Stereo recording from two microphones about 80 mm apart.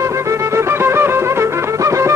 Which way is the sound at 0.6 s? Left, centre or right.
Right.